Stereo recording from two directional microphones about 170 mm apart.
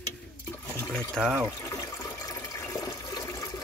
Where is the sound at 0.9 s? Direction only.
5° left (ahead or behind).